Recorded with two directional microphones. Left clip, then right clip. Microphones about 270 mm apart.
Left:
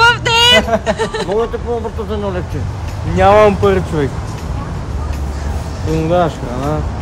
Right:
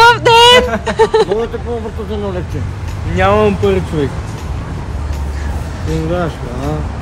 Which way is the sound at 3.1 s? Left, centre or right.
Left.